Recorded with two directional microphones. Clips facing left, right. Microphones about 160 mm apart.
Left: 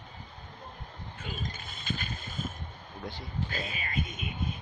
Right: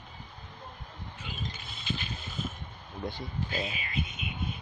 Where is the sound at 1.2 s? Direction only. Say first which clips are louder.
Left 2 dB; 45° left (ahead or behind).